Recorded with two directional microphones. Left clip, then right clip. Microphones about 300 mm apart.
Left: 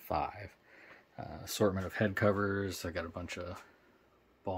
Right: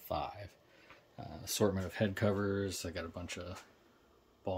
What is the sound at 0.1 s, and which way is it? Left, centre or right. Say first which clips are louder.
Speech: left 3 dB; centre.